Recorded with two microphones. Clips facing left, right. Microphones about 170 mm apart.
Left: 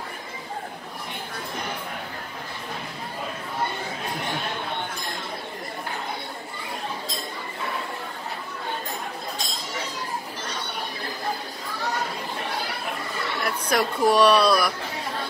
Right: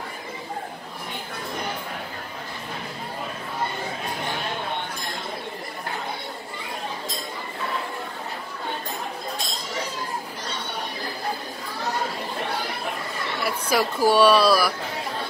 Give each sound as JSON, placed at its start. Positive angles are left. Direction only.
{"t": 13.4, "sound": "speech", "side_deg": -5}